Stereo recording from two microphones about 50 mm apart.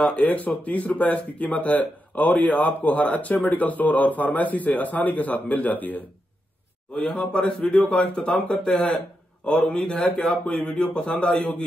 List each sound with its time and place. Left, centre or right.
0.2 s speech: left
6.9 s a man's voice: centre